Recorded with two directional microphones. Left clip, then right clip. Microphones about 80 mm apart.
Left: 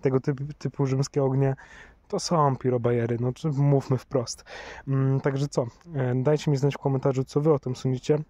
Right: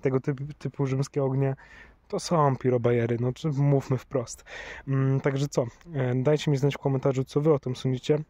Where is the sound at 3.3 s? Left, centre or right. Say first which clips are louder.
Left 1 dB; left.